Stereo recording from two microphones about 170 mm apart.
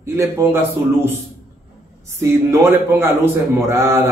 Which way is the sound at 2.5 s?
15° right (ahead or behind).